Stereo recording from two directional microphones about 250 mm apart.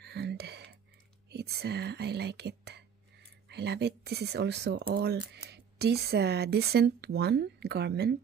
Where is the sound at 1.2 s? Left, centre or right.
Right.